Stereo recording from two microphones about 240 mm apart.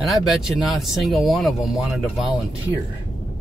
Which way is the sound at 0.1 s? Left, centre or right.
Centre.